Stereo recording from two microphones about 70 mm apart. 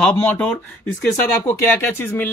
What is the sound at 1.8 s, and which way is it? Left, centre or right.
Speech, left.